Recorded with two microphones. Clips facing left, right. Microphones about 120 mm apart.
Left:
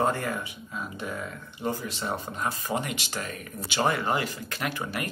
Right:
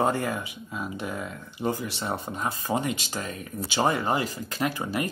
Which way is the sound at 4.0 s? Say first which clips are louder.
Right 1 dB; 40° right (ahead or behind).